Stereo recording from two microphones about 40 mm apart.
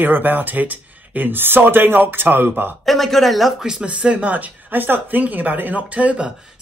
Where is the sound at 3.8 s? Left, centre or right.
Right.